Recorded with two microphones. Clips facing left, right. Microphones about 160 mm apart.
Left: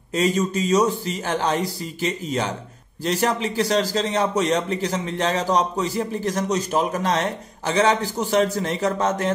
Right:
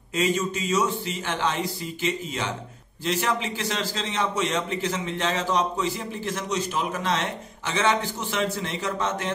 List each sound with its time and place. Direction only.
0.1 s a man's voice: 35° left (ahead or behind)